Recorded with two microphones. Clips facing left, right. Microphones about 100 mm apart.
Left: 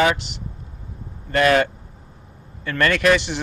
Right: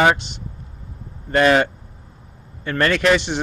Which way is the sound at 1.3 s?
25° right (ahead or behind).